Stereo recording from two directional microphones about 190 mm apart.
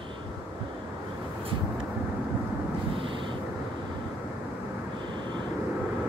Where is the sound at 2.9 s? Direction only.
25° right (ahead or behind).